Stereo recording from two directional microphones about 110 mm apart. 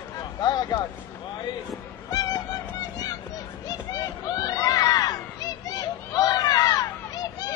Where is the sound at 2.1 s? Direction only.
35° left (ahead or behind).